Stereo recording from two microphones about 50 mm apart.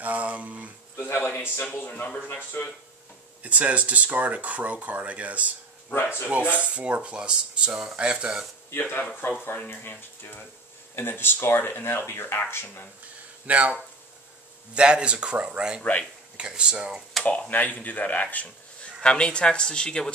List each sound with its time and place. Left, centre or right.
0.0 s a sound: right
0.9 s a man's voice: left
3.4 s speech: right
5.9 s speech: left
6.6 s speech: right
9.2 s speech: left
13.5 s speech: right
17.2 s speech: left
18.9 s speech: centre